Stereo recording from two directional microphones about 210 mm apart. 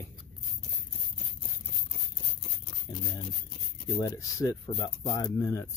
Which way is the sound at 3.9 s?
15° left (ahead or behind).